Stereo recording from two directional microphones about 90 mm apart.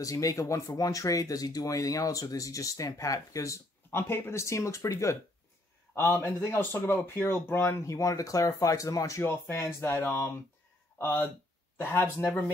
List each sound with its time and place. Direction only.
0.0 s speech: 40° left (ahead or behind)